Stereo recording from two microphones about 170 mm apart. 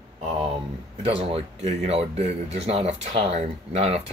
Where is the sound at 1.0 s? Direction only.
35° right (ahead or behind).